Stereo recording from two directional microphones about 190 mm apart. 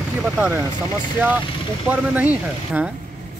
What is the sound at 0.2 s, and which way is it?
Speech, 10° right (ahead or behind).